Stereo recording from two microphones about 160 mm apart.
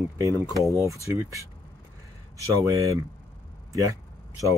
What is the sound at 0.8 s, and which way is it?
Speech, 20° right (ahead or behind).